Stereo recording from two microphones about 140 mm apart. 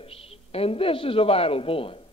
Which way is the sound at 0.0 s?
45° left (ahead or behind).